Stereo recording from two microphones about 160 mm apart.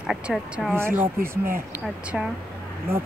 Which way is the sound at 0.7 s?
15° right (ahead or behind).